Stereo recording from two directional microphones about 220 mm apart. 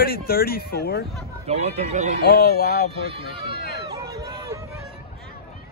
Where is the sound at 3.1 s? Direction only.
20° right (ahead or behind).